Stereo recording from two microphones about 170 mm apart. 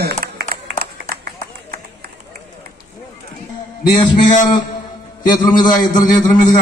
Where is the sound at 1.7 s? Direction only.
65° right (ahead or behind).